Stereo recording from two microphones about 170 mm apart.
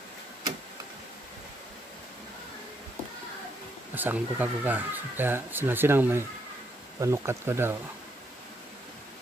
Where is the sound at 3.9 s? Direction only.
10° right (ahead or behind).